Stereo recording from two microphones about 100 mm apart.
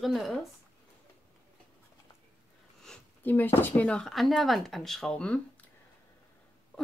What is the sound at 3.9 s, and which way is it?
Speech, 5° left (ahead or behind).